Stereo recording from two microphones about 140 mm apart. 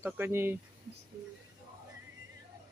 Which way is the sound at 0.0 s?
20° right (ahead or behind).